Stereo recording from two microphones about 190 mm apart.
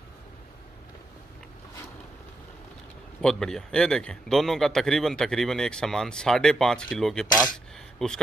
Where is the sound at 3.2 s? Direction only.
5° left (ahead or behind).